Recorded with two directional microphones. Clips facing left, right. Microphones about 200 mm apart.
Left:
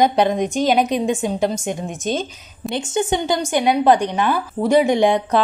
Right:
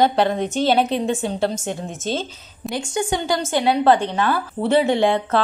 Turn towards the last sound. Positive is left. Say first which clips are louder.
# left 2 dB
turn(degrees=15)  # may be behind; listen again after turning